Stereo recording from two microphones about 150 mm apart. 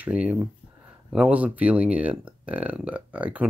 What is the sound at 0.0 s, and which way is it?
Speech, 10° right (ahead or behind).